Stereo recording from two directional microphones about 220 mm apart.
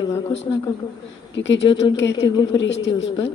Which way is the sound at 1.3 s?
55° left (ahead or behind).